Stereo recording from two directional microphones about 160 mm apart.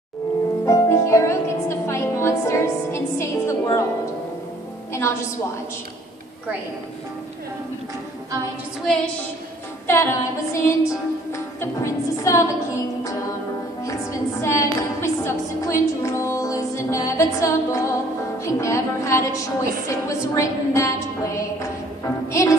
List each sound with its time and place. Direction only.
0.7 s speech: 20° left (ahead or behind)
4.9 s speech: 15° left (ahead or behind)
9.8 s a woman's voice: 15° left (ahead or behind)